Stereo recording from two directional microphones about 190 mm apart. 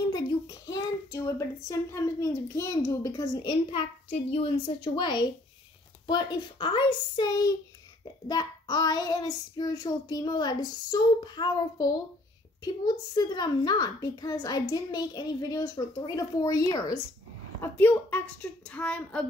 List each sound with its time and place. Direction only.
0.1 s a child's voice: 20° left (ahead or behind)